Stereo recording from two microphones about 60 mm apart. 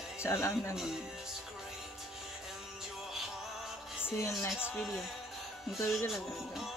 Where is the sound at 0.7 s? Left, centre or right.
Centre.